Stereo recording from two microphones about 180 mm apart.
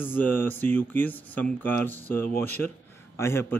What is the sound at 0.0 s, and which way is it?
A man's voice, 10° left (ahead or behind).